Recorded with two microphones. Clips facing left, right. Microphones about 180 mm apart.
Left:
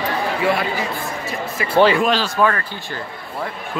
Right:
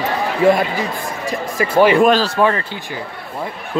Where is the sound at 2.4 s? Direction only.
20° right (ahead or behind).